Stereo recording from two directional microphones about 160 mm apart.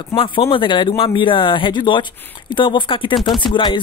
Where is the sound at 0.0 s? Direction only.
30° left (ahead or behind).